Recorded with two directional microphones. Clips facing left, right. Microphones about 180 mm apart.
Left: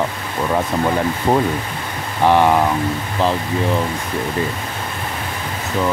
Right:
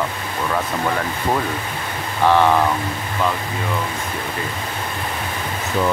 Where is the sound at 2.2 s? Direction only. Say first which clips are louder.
Left 2 dB; 15° left (ahead or behind).